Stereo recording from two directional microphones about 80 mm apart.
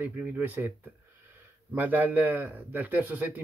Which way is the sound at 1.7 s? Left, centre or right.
Right.